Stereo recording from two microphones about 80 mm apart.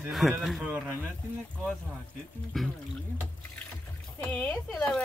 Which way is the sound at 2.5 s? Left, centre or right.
Centre.